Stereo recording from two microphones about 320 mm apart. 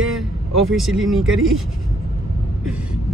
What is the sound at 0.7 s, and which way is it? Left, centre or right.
Speech, centre.